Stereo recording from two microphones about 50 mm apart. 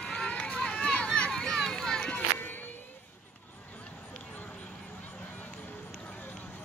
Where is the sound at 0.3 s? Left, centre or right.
Centre.